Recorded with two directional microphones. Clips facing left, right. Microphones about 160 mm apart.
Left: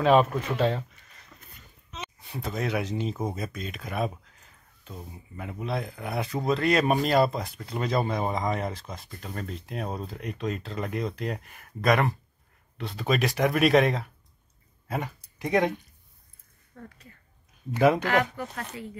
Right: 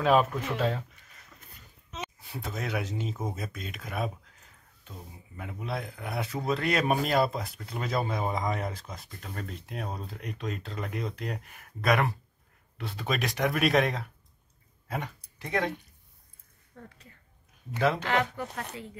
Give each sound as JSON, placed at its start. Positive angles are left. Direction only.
{"t": 0.0, "sound": "speech", "side_deg": 0}
{"t": 2.3, "sound": "speech", "side_deg": 0}
{"t": 5.4, "sound": "speech", "side_deg": 0}
{"t": 17.7, "sound": "speech", "side_deg": 15}